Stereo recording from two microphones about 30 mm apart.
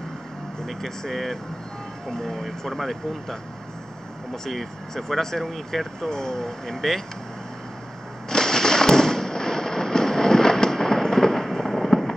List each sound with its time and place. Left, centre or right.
1.1 s speech: centre
8.3 s fireworks: centre
11.4 s fireworks: centre